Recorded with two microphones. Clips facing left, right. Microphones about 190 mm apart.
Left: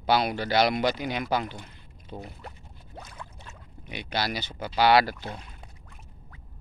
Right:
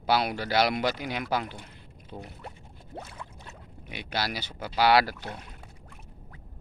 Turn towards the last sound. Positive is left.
turn(degrees=-5)  # may be behind; listen again after turning